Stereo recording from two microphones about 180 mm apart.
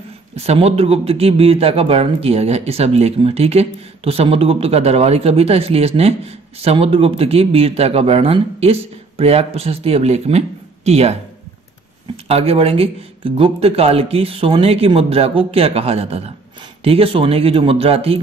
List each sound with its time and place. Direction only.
0.5 s speech: 35° right (ahead or behind)
12.3 s speech: 35° right (ahead or behind)